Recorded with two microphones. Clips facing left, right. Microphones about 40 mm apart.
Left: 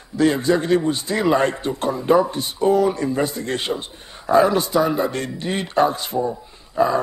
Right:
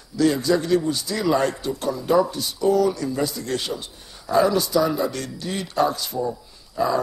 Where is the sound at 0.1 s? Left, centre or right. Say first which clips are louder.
Left 2 dB; left.